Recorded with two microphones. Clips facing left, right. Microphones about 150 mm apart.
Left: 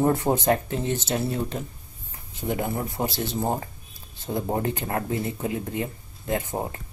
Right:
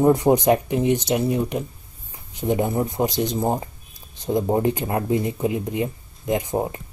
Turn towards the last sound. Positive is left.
turn(degrees=-15)  # may be behind; listen again after turning